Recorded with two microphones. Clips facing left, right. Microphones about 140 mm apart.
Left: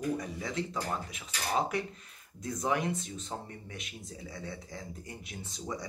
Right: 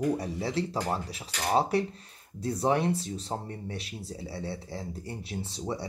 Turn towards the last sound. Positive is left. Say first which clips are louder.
# right 5 dB
turn(degrees=-30)  # may be behind; listen again after turning